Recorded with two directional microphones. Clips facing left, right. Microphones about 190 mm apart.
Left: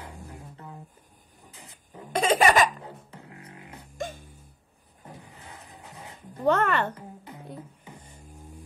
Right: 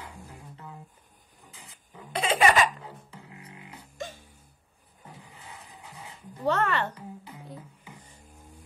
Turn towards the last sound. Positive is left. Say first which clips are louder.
# left 3 dB
turn(degrees=50)  # may be behind; listen again after turning